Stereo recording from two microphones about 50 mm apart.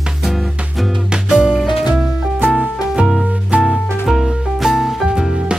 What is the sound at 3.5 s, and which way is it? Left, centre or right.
Music, right.